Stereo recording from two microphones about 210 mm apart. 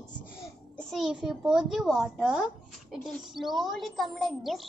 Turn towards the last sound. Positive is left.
turn(degrees=0)  # may be behind; listen again after turning